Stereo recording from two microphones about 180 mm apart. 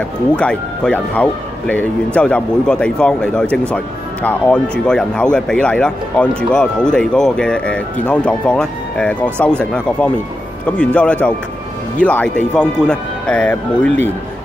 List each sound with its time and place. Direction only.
0.4 s speech: 5° left (ahead or behind)